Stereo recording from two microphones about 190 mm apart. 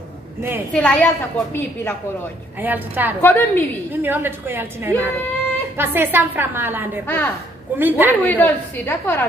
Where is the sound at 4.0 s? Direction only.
10° right (ahead or behind).